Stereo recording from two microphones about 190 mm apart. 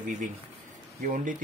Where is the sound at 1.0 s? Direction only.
45° right (ahead or behind).